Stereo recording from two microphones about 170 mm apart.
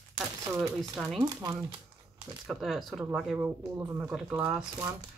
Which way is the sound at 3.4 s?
15° right (ahead or behind).